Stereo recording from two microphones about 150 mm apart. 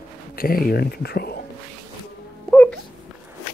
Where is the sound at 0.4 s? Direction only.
80° left.